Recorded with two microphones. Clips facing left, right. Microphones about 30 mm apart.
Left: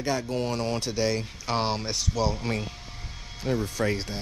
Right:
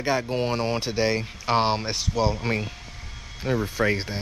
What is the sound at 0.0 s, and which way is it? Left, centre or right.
Speech, right.